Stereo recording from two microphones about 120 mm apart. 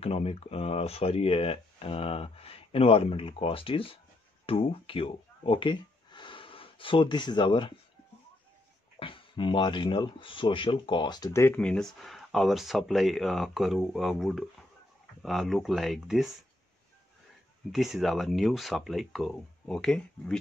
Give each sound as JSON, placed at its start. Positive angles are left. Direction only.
{"t": 0.0, "sound": "speech", "side_deg": 55}
{"t": 9.0, "sound": "speech", "side_deg": 45}
{"t": 11.3, "sound": "speech", "side_deg": 15}
{"t": 17.6, "sound": "speech", "side_deg": 0}